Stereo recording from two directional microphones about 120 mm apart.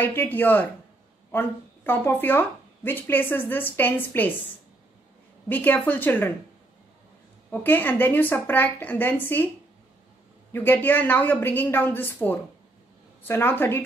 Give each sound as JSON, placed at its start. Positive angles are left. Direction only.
{"t": 0.0, "sound": "speech", "side_deg": 15}
{"t": 5.5, "sound": "speech", "side_deg": 15}
{"t": 7.5, "sound": "speech", "side_deg": 15}
{"t": 10.5, "sound": "speech", "side_deg": 15}